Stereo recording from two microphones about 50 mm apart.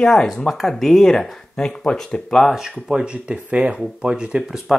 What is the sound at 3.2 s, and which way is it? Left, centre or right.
Speech, right.